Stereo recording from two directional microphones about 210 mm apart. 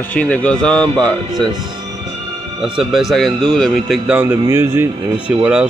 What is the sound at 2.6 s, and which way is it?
Speech, centre (ahead or behind).